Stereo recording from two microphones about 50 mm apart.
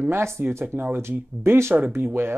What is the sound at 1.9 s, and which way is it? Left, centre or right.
Speech, right.